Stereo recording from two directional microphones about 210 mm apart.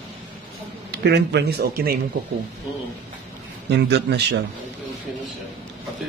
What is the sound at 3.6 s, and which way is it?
Speech, 55° right (ahead or behind).